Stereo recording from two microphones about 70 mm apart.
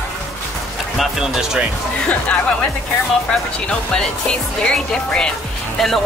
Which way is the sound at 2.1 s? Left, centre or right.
Centre.